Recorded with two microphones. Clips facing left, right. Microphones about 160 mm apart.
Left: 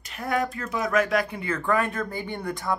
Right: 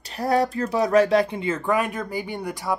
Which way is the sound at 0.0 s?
35° right (ahead or behind).